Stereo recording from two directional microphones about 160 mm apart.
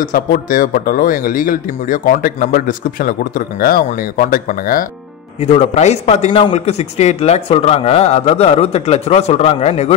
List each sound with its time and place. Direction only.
0.0 s speech: 55° left (ahead or behind)
5.4 s a man's voice: 45° left (ahead or behind)